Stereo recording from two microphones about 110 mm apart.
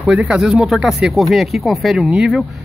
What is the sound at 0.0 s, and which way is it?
A man's voice, 10° right (ahead or behind).